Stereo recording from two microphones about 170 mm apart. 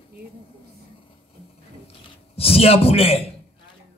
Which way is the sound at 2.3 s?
35° left (ahead or behind).